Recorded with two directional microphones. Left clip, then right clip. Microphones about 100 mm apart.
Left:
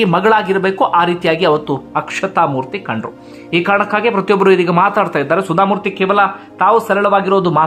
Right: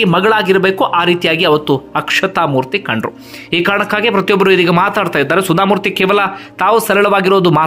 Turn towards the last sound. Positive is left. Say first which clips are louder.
# right 2 dB
turn(degrees=-35)  # may be behind; listen again after turning